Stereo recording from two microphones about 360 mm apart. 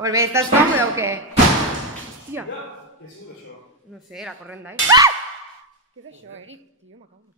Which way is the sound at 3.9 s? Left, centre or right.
Centre.